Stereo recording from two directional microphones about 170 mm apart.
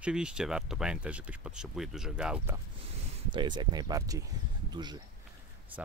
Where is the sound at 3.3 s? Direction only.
25° right (ahead or behind).